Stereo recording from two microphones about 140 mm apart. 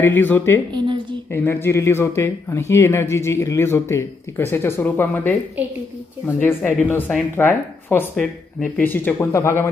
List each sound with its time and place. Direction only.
0.0 s speech: 15° left (ahead or behind)
0.7 s a sound: 35° right (ahead or behind)
1.3 s speech: 15° left (ahead or behind)